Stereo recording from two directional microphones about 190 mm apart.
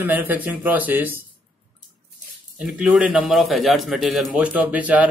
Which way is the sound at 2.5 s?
5° right (ahead or behind).